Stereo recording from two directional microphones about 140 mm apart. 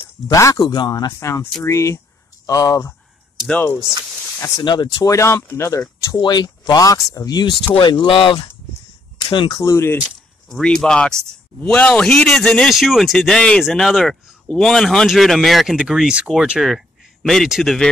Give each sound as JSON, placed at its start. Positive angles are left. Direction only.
{"t": 0.3, "sound": "speech", "side_deg": 25}
{"t": 3.4, "sound": "speech", "side_deg": 10}
{"t": 4.4, "sound": "speech", "side_deg": 30}
{"t": 9.6, "sound": "speech", "side_deg": 20}
{"t": 10.5, "sound": "a man's voice", "side_deg": 5}